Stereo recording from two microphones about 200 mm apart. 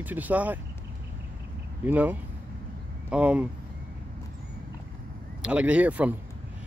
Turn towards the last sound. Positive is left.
turn(degrees=-5)  # may be behind; listen again after turning